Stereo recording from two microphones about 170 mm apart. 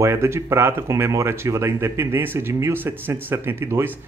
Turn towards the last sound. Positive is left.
turn(degrees=-15)  # may be behind; listen again after turning